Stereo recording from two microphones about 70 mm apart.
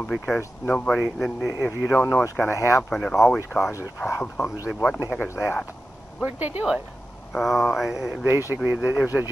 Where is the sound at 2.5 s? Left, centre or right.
Left.